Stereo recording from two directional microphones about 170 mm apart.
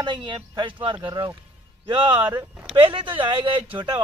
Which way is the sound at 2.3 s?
10° right (ahead or behind).